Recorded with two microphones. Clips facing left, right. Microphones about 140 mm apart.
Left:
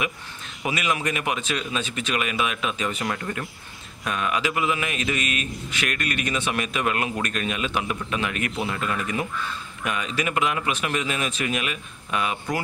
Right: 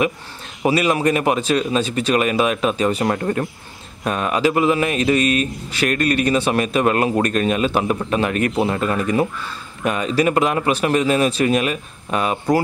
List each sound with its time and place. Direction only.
0.6 s speech: 35° right (ahead or behind)